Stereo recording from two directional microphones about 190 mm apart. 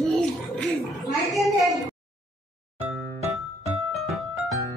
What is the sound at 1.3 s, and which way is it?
Speech, centre (ahead or behind).